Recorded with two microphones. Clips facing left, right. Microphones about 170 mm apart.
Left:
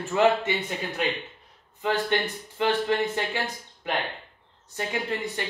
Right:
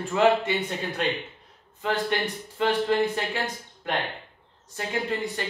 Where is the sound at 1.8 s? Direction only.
20° left (ahead or behind).